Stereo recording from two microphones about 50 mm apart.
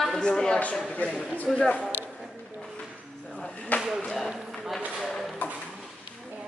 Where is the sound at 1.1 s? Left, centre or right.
Centre.